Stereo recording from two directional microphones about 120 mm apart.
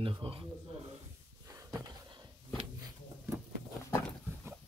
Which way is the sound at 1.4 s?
30° right (ahead or behind).